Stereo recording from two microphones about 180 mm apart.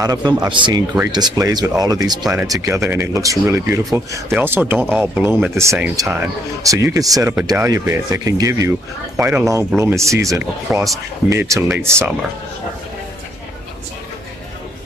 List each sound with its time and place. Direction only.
0.0 s speech: 20° right (ahead or behind)